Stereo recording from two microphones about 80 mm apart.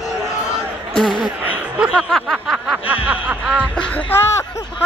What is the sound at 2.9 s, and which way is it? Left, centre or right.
Snicker, centre.